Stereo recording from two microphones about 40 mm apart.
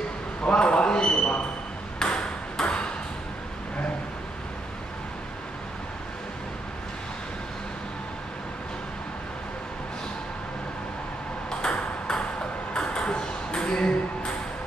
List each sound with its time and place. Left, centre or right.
0.4 s a sound: left
2.0 s ping: left
12.7 s ping: left